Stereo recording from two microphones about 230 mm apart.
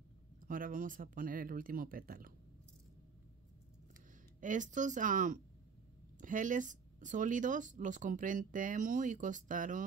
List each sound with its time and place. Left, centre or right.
0.5 s speech: right
4.4 s speech: right